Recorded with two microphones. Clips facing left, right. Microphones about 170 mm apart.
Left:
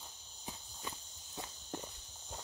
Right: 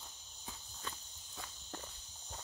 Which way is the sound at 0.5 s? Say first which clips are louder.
Left 2 dB; 20° left (ahead or behind).